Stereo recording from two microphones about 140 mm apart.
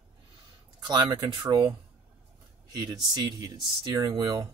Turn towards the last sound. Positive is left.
turn(degrees=-25)  # may be behind; listen again after turning